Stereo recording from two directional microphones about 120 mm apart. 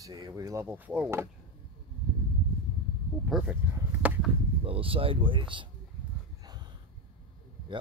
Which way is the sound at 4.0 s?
15° right (ahead or behind).